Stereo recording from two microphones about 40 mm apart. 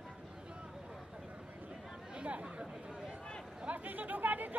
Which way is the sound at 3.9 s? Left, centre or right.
Right.